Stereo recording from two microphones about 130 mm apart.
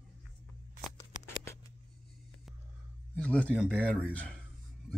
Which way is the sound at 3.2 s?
10° left (ahead or behind).